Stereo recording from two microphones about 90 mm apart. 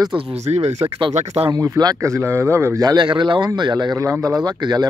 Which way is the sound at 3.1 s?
60° right (ahead or behind).